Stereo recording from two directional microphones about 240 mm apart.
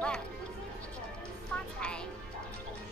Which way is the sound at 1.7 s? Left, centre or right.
Centre.